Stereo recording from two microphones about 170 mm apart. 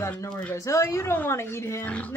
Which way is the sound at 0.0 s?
15° left (ahead or behind).